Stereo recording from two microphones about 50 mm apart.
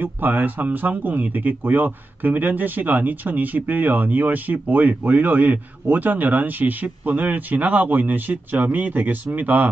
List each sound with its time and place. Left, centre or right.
0.0 s speech: right